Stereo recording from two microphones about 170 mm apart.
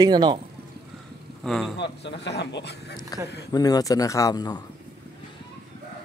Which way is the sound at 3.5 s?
20° left (ahead or behind).